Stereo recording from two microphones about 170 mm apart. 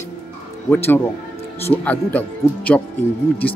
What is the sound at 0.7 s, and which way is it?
Speech, 10° left (ahead or behind).